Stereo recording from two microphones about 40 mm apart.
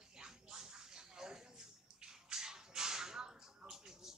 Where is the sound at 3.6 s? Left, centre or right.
Centre.